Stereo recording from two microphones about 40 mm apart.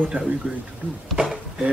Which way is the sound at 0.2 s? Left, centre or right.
Right.